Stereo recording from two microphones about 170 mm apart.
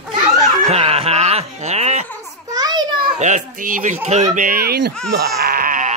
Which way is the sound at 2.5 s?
20° right (ahead or behind).